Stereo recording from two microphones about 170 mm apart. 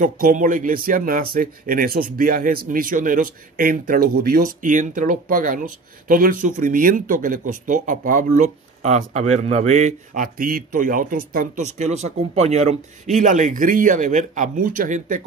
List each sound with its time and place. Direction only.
0.0 s speech: 50° right (ahead or behind)